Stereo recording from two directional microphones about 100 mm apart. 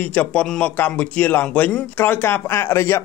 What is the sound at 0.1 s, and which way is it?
A man's voice, 15° left (ahead or behind).